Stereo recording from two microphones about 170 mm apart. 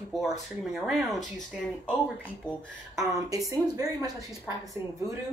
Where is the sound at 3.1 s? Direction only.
20° right (ahead or behind).